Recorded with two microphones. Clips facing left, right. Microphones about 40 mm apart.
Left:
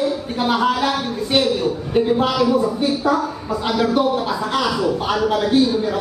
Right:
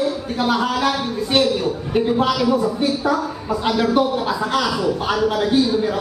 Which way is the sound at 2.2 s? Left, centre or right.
Centre.